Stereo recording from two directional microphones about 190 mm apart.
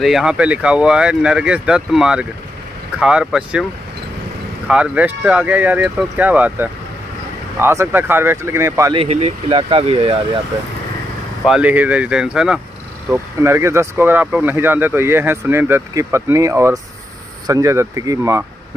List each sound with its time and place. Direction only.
0.0 s speech: 5° right (ahead or behind)
4.6 s speech: 5° right (ahead or behind)
8.9 s speech: 30° right (ahead or behind)
11.4 s speech: 5° right (ahead or behind)